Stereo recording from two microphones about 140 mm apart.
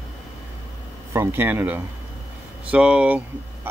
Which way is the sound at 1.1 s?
20° right (ahead or behind).